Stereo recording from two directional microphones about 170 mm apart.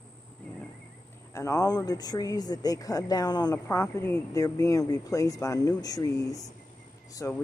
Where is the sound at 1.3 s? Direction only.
20° left (ahead or behind).